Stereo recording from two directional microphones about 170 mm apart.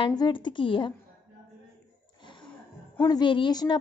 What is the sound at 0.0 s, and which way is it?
Speech, 25° left (ahead or behind).